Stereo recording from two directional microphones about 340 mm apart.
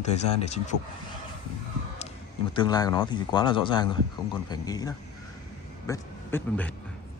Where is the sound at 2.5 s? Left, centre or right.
Centre.